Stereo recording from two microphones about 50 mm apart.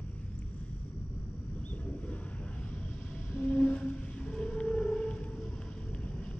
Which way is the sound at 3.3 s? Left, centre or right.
Left.